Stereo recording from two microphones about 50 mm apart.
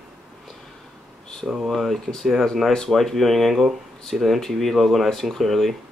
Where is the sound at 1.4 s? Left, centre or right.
Centre.